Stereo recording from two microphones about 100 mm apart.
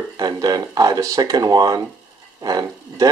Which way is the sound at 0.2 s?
40° right (ahead or behind).